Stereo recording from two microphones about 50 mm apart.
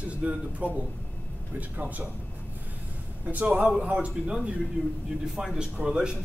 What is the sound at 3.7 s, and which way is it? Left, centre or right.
Speech, centre.